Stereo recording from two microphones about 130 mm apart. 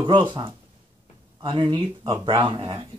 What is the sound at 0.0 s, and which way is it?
Speech, 35° right (ahead or behind).